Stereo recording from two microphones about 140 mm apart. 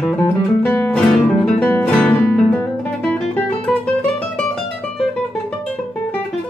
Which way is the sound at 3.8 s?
5° left (ahead or behind).